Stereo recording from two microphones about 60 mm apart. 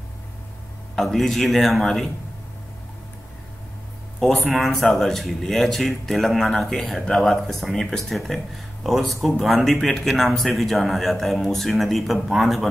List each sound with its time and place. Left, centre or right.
0.9 s speech: centre
4.4 s speech: centre